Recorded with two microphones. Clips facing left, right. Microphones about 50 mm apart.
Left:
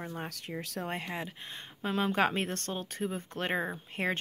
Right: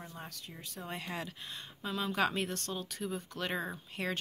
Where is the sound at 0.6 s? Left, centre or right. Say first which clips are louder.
Left 6 dB; left.